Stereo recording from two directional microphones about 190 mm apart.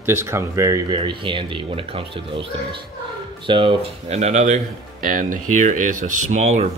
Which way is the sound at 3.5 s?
25° right (ahead or behind).